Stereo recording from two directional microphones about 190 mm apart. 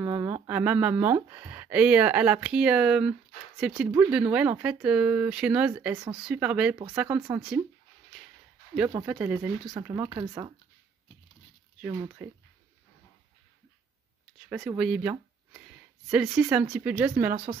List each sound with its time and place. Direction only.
0.0 s a sound: 15° right (ahead or behind)
0.5 s speech: 10° right (ahead or behind)
8.7 s speech: 5° right (ahead or behind)
12.2 s speech: 5° right (ahead or behind)
14.5 s speech: 5° right (ahead or behind)